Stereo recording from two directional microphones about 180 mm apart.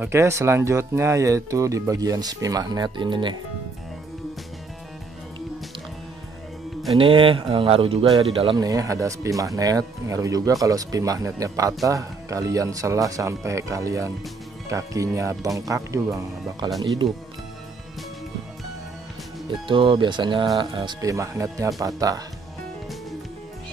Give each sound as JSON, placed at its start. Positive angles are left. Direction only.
{"t": 0.0, "sound": "speech", "side_deg": -15}
{"t": 7.0, "sound": "speech", "side_deg": -30}
{"t": 19.7, "sound": "speech", "side_deg": -25}